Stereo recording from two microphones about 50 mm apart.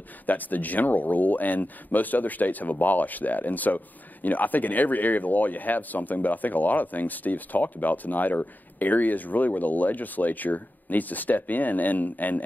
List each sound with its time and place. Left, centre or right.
0.3 s speech: left